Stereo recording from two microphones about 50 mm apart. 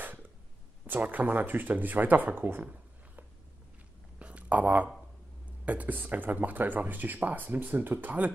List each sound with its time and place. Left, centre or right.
0.8 s speech: right
2.6 s a sound: right
5.7 s speech: right